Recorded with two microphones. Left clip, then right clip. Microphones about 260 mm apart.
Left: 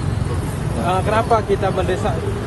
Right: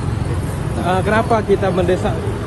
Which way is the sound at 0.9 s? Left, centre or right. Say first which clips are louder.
Right 1 dB; right.